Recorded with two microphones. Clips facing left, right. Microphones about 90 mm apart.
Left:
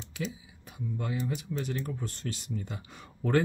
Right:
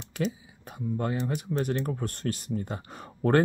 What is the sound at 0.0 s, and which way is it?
Speech, 55° right (ahead or behind).